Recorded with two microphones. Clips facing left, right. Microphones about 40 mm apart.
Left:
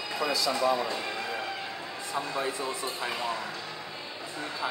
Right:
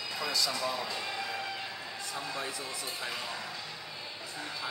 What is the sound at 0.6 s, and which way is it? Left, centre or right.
Speech, centre.